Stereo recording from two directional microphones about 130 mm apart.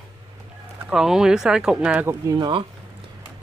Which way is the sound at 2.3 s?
35° right (ahead or behind).